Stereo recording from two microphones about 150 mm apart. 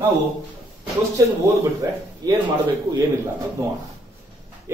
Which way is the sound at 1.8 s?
25° right (ahead or behind).